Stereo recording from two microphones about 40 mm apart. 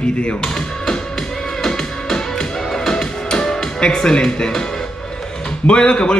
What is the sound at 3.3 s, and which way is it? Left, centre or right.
Music, left.